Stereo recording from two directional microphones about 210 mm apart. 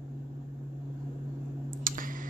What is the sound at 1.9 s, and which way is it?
Clicking, 40° right (ahead or behind).